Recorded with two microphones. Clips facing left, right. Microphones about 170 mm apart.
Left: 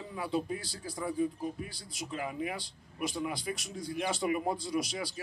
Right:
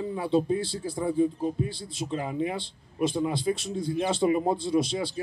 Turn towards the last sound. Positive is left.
turn(degrees=-25)  # may be behind; listen again after turning